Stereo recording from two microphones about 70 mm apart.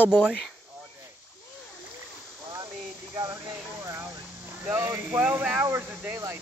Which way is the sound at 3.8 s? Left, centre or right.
Right.